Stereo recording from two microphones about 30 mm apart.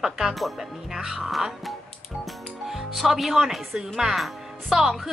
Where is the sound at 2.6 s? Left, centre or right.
Centre.